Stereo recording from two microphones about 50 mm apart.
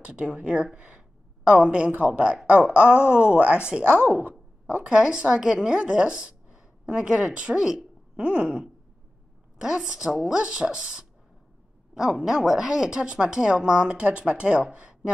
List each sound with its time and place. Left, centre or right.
0.0 s speech: right
0.7 s a sound: right
2.0 s a woman's voice: right